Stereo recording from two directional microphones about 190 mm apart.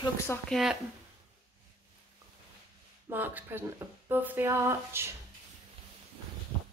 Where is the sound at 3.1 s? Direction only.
10° right (ahead or behind).